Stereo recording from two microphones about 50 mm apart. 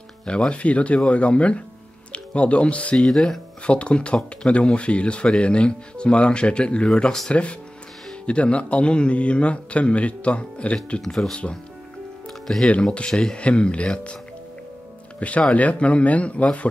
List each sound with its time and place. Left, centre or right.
0.2 s speech: centre
3.1 s speech: centre
3.6 s speech: left
11.0 s speech: centre
12.3 s music: centre
13.1 s speech: centre
13.4 s speech: left
15.1 s speech: left